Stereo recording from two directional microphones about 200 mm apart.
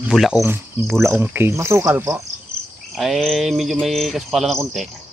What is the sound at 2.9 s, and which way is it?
Speech, centre (ahead or behind).